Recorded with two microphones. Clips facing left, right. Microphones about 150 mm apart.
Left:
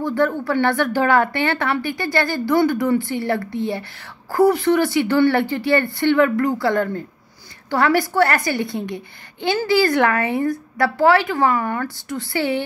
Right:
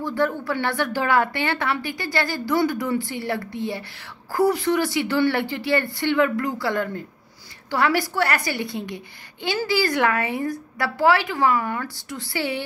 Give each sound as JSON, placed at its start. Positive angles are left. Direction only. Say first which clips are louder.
{"t": 0.0, "sound": "a woman's voice", "louder": "left 4 dB", "side_deg": 55}